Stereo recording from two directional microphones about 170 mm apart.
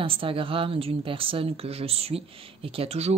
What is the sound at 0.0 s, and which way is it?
A woman's voice, 30° right (ahead or behind).